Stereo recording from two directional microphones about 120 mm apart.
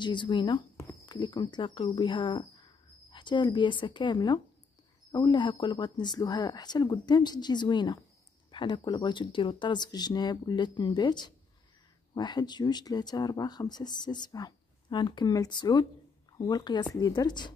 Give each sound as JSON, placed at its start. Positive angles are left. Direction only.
{"t": 0.0, "sound": "speech", "side_deg": 40}